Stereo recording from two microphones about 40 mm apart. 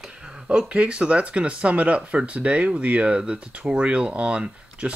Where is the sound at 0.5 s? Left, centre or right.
Right.